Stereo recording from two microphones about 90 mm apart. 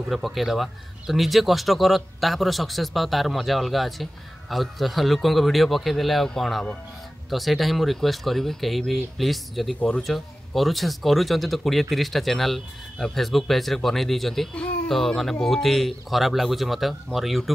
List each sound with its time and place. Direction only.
0.1 s speech: centre (ahead or behind)
14.5 s speech: 15° left (ahead or behind)
14.9 s speech: 5° left (ahead or behind)